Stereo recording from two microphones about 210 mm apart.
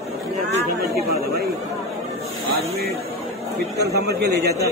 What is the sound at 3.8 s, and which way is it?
Speech, 50° right (ahead or behind).